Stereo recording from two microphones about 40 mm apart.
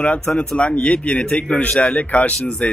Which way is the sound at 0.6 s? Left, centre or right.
Left.